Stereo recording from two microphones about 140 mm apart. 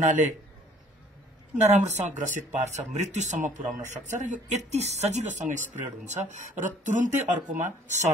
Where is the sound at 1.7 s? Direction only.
55° right (ahead or behind).